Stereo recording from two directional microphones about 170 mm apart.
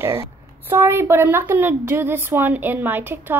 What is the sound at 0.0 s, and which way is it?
Speech, 25° right (ahead or behind).